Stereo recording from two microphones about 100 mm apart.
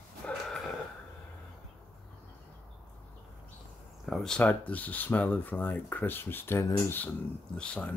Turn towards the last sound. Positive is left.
turn(degrees=10)  # may be behind; listen again after turning